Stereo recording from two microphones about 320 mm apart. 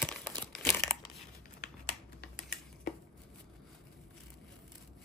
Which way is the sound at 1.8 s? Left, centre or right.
Left.